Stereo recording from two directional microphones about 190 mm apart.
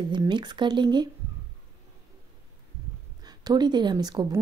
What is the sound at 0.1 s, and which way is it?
Speech, 25° right (ahead or behind).